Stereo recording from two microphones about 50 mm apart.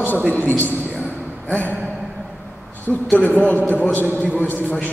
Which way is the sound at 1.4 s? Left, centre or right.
Left.